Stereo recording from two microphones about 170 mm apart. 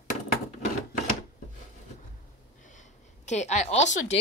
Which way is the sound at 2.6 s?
45° left (ahead or behind).